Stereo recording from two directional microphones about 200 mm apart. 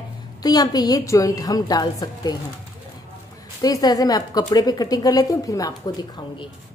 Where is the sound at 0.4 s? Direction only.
20° left (ahead or behind).